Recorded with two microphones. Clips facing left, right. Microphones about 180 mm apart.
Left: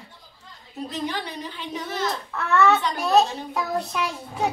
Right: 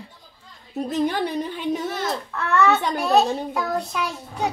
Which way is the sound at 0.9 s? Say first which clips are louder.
Right 7 dB; 50° right (ahead or behind).